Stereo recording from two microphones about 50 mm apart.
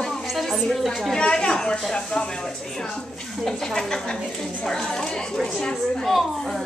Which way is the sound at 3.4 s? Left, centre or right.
Centre.